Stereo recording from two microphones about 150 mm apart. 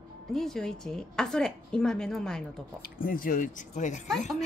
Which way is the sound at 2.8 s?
70° left (ahead or behind).